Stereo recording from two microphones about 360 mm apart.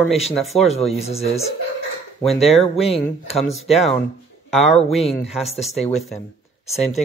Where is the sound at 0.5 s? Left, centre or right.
Centre.